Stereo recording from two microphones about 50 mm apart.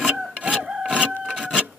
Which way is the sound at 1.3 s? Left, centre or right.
Centre.